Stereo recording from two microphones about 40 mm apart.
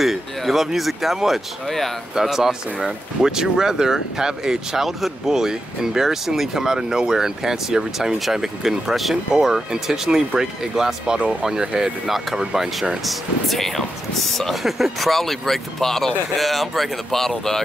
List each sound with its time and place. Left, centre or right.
0.0 s a sound: centre
0.7 s speech: centre
13.0 s speech: centre